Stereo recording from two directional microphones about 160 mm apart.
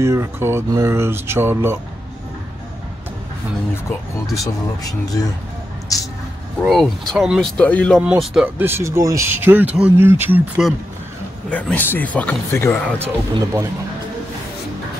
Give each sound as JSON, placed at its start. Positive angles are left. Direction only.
{"t": 0.0, "sound": "speech", "side_deg": -15}
{"t": 4.4, "sound": "speech", "side_deg": 25}
{"t": 6.6, "sound": "speech", "side_deg": 0}
{"t": 8.0, "sound": "speech", "side_deg": -5}
{"t": 8.6, "sound": "speech", "side_deg": -15}
{"t": 11.5, "sound": "speech", "side_deg": 10}
{"t": 13.0, "sound": "speech", "side_deg": -20}